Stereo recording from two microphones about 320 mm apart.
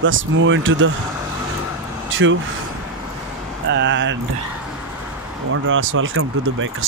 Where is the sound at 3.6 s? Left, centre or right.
Right.